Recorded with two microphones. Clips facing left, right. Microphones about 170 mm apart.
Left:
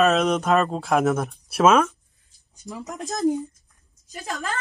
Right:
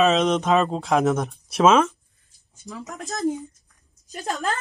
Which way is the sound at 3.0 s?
15° left (ahead or behind).